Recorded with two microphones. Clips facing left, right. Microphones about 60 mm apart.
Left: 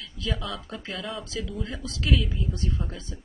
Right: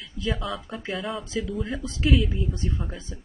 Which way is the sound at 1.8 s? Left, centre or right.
Right.